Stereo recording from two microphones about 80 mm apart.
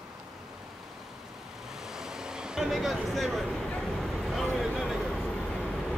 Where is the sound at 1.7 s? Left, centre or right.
Centre.